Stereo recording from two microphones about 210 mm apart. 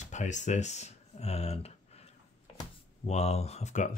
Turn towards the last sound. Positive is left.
turn(degrees=35)  # may be behind; listen again after turning